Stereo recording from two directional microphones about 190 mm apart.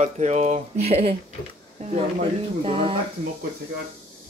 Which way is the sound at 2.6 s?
30° right (ahead or behind).